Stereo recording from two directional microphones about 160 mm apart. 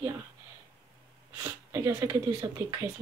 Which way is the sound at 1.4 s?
15° right (ahead or behind).